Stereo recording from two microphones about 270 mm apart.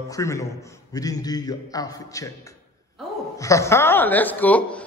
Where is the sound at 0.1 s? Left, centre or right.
Centre.